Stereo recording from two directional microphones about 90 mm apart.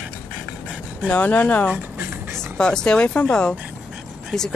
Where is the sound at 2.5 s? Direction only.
10° left (ahead or behind).